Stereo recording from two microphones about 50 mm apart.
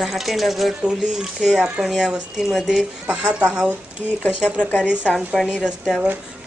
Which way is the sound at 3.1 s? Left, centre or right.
Right.